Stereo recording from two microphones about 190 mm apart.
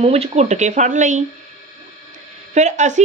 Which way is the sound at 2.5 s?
40° right (ahead or behind).